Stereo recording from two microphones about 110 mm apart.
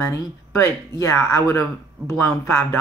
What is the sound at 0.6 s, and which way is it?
Speech, 25° left (ahead or behind).